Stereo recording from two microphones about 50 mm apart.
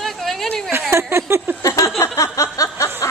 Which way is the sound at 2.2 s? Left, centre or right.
Left.